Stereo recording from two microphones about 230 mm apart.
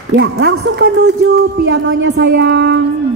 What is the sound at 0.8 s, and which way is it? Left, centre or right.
A woman's voice, right.